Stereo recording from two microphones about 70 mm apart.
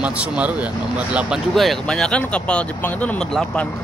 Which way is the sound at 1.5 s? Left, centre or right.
Centre.